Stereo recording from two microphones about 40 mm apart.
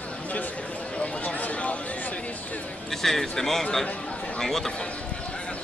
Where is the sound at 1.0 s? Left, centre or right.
Left.